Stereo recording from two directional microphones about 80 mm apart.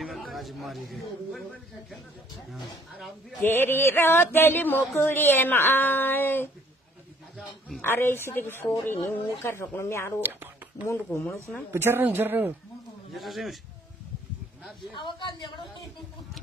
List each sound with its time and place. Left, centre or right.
0.0 s speech: centre
3.4 s a woman's voice: left
7.8 s a woman's voice: left
10.2 s a man's voice: right
13.1 s a man's voice: centre
15.0 s speech: left